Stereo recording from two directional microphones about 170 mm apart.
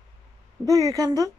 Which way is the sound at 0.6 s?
20° right (ahead or behind).